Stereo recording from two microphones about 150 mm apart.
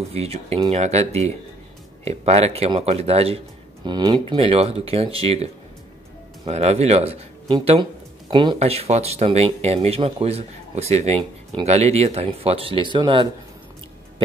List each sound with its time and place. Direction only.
0.1 s speech: 45° right (ahead or behind)
3.8 s speech: 30° right (ahead or behind)
4.4 s speech: 40° right (ahead or behind)
8.3 s speech: 30° right (ahead or behind)
8.5 s speech: 45° right (ahead or behind)